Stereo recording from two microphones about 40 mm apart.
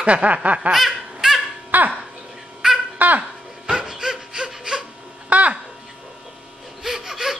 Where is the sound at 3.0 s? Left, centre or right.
Right.